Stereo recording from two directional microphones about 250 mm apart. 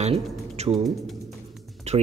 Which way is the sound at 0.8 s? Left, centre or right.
Centre.